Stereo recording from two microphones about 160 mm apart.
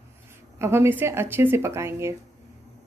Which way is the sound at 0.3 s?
15° right (ahead or behind).